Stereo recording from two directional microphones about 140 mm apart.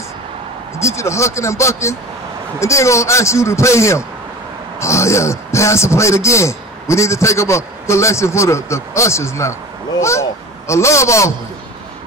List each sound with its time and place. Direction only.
0.7 s a man's voice: 20° left (ahead or behind)